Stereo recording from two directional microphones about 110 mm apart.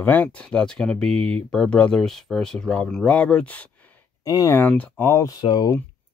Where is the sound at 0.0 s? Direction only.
15° left (ahead or behind).